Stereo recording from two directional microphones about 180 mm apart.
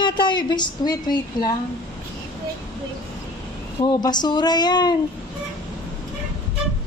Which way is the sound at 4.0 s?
25° left (ahead or behind).